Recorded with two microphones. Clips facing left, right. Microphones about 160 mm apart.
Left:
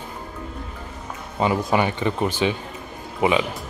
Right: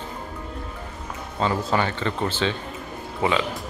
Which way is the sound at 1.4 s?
15° left (ahead or behind).